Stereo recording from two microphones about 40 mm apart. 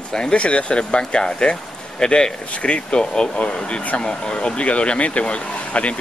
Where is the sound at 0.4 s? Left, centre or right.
Left.